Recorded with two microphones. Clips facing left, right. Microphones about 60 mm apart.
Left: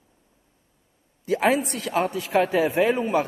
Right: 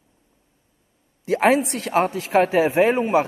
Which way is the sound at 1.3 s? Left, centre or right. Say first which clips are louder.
Right 4 dB; right.